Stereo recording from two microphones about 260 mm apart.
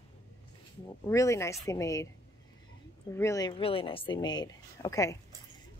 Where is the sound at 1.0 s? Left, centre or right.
Centre.